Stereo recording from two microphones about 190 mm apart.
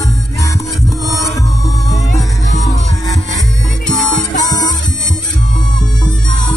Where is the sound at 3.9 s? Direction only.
Centre (ahead or behind).